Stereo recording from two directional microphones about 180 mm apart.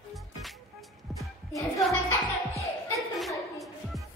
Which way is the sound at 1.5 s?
15° left (ahead or behind).